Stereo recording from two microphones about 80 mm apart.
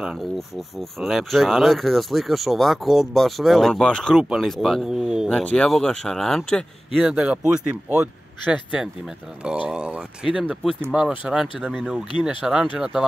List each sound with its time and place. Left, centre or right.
0.0 s speech: centre
4.2 s speech: centre
5.3 s speech: centre
6.9 s speech: centre
11.6 s speech: centre
12.7 s speech: centre